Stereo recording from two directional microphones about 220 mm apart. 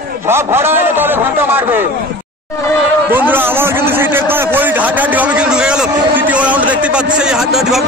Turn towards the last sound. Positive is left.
turn(degrees=0)  # may be behind; listen again after turning